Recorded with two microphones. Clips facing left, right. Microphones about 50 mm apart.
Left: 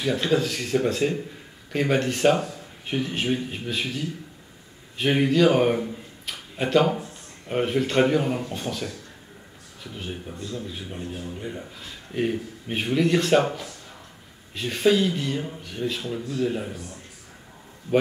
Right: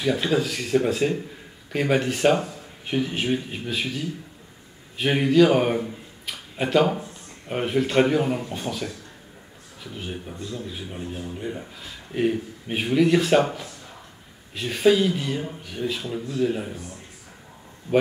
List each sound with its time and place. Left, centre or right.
0.0 s a man's voice: centre
16.7 s speech: right